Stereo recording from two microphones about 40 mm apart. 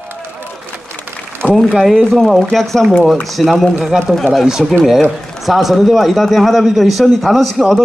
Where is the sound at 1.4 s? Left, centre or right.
Right.